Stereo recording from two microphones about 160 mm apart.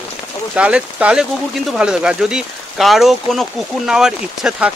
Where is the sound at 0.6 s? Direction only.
5° right (ahead or behind).